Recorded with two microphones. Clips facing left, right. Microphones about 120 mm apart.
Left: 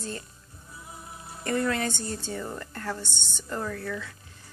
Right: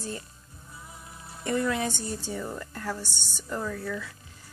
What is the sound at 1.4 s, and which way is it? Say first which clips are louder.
Speech: even; 10° right (ahead or behind).